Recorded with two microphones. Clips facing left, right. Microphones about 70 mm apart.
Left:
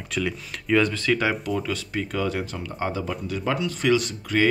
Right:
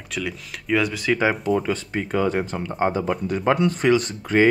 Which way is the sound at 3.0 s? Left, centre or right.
Right.